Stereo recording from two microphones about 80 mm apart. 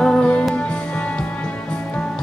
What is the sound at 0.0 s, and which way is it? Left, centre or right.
Music, centre.